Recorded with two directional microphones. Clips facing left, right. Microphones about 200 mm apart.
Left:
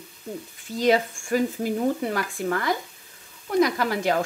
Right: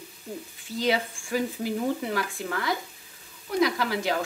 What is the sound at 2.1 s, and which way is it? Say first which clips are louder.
A woman's voice: left 4 dB; 50° left (ahead or behind).